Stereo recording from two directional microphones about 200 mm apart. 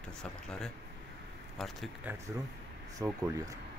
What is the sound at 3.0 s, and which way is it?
Speech, 15° right (ahead or behind).